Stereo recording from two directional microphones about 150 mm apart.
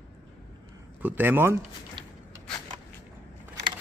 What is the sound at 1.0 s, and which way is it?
Speech, 15° right (ahead or behind).